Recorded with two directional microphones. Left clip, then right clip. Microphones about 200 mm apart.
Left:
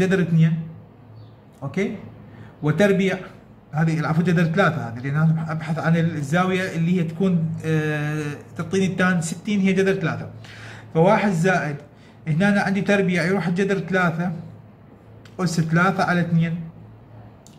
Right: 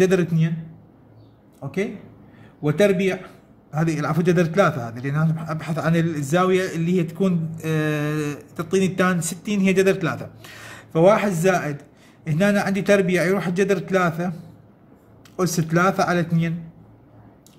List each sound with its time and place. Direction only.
0.0 s a man's voice: 40° right (ahead or behind)
1.6 s a man's voice: 30° right (ahead or behind)
15.3 s a man's voice: 40° right (ahead or behind)